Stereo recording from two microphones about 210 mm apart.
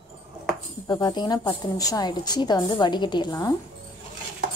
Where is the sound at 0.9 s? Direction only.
20° left (ahead or behind).